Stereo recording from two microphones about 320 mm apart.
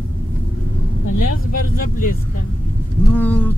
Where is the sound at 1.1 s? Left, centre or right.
Left.